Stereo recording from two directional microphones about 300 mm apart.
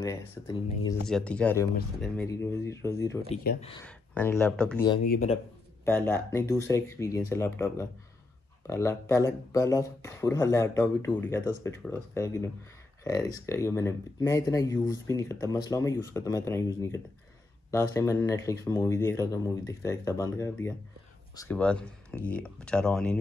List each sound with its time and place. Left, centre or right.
0.0 s speech: centre
5.0 s speech: left
5.9 s speech: centre